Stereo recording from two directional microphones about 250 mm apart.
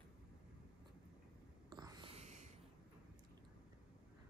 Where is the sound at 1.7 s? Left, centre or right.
Centre.